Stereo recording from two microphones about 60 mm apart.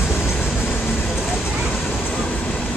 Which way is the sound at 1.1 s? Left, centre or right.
Centre.